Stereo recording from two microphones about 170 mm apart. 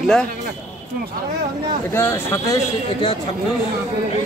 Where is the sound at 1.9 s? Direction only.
15° left (ahead or behind).